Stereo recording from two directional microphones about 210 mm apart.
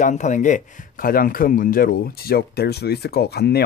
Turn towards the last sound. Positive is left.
turn(degrees=50)  # may be behind; listen again after turning